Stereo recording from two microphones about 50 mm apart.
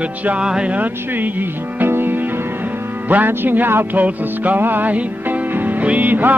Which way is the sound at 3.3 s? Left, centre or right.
Right.